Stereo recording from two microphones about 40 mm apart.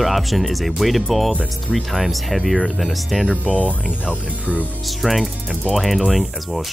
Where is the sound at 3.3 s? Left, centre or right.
Right.